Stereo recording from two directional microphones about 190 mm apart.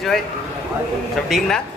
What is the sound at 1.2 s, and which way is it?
Speech, centre (ahead or behind).